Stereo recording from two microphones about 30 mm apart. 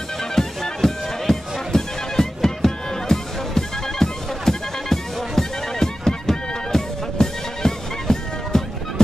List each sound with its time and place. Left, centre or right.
0.2 s music: centre